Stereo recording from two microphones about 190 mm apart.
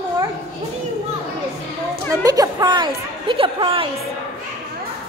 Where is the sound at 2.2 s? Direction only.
20° right (ahead or behind).